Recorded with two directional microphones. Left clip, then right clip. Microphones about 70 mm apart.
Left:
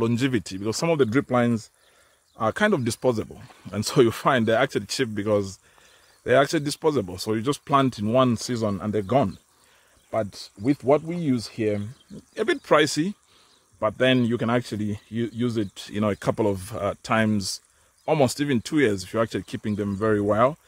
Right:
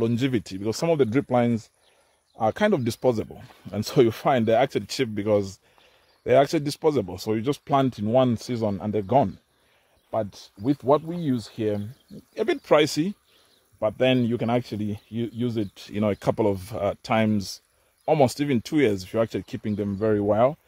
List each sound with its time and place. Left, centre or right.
0.0 s speech: right
0.8 s speech: right
3.7 s speech: centre
12.1 s speech: centre
12.6 s speech: right
13.7 s speech: right
15.9 s speech: right
18.2 s speech: right